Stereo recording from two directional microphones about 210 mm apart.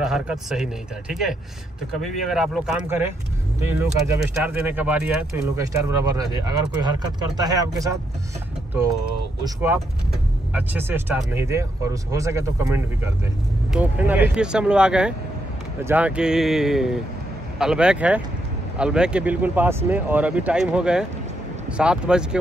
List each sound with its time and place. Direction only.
0.0 s speech: 5° right (ahead or behind)
5.6 s speech: 15° right (ahead or behind)
9.4 s speech: 10° right (ahead or behind)